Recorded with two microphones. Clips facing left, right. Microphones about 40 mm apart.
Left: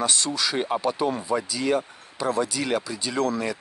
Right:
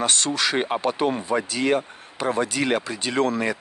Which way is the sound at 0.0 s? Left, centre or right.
Right.